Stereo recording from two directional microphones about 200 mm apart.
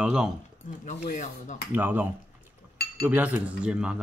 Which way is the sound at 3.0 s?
10° right (ahead or behind).